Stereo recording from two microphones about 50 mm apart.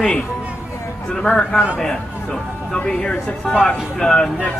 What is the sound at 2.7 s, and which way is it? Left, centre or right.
A man's voice, left.